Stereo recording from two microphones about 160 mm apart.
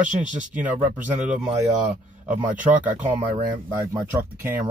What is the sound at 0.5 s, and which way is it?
Speech, 10° right (ahead or behind).